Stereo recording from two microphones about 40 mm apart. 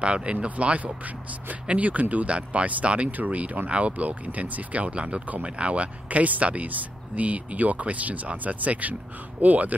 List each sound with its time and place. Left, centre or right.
0.0 s speech: right